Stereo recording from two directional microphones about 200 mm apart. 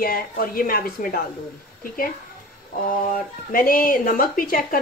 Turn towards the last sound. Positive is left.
turn(degrees=45)  # may be behind; listen again after turning